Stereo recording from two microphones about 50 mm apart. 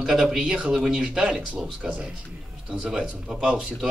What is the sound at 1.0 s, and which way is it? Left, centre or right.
Speech, centre.